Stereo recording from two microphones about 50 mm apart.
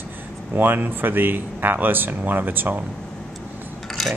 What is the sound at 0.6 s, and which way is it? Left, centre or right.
A man's voice, right.